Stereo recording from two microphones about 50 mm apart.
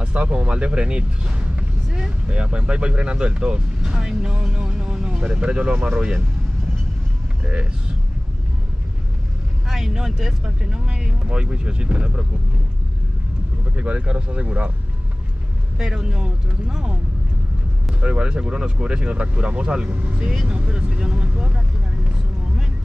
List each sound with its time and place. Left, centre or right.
0.0 s speech: right
9.7 s speech: centre
13.7 s speech: right
15.8 s speech: centre
18.0 s speech: right